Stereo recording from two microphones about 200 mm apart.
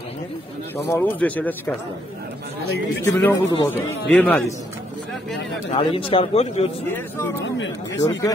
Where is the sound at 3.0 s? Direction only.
10° left (ahead or behind).